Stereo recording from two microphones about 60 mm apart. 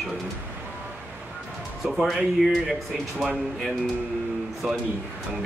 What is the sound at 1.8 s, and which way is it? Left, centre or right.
Speech, centre.